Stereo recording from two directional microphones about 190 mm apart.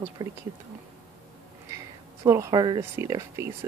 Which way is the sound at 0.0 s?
15° right (ahead or behind).